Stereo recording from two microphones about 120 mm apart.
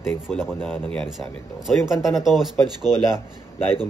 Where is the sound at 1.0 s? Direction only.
5° right (ahead or behind).